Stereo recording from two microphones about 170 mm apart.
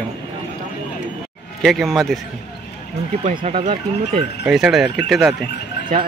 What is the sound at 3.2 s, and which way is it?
Speech, 50° right (ahead or behind).